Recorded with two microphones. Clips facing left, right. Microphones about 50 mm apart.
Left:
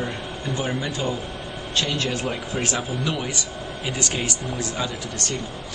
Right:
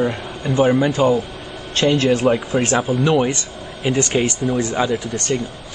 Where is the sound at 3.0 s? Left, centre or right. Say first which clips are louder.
Right 10 dB; right.